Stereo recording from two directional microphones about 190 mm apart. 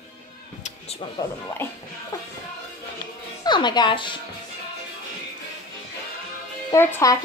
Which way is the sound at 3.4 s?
25° left (ahead or behind).